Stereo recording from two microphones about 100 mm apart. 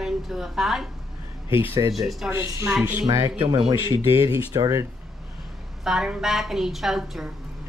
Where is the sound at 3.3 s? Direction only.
65° right (ahead or behind).